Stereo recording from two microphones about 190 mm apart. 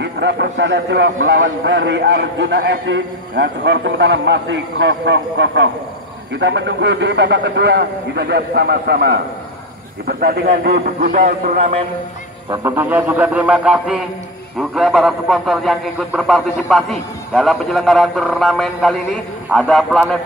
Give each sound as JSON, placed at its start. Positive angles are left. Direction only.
{"t": 0.0, "sound": "a man's voice", "side_deg": -65}
{"t": 12.4, "sound": "a man's voice", "side_deg": -15}